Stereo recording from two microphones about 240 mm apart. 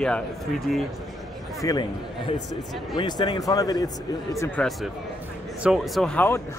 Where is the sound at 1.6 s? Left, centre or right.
Centre.